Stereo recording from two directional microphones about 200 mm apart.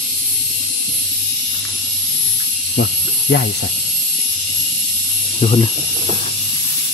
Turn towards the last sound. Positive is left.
turn(degrees=30)  # may be behind; listen again after turning